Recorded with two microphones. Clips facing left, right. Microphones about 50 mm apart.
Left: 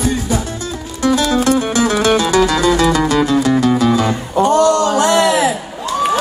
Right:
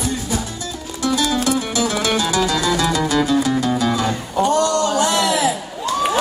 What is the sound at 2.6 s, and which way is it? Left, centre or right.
Music, left.